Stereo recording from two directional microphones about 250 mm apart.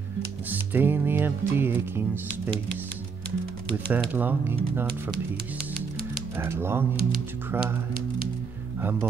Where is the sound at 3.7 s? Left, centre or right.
Centre.